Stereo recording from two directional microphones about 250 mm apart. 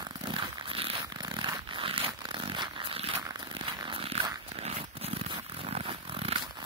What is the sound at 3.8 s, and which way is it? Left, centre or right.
Dog, right.